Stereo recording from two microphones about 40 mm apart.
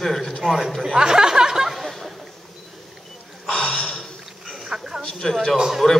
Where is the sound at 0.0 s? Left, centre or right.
Centre.